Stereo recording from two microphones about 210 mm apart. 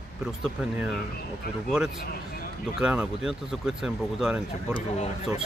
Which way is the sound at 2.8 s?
5° right (ahead or behind).